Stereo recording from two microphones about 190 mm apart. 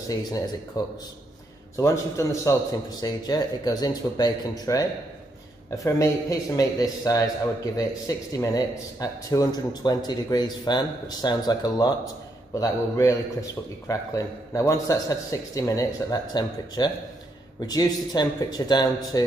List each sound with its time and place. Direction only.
0.1 s a man's voice: 20° left (ahead or behind)